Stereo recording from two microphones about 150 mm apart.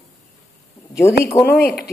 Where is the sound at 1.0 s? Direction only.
15° left (ahead or behind).